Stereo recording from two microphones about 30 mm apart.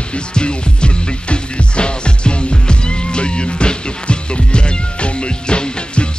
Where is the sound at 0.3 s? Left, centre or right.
Left.